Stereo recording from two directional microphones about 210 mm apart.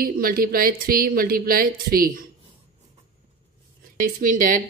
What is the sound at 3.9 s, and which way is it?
Speech, 40° right (ahead or behind).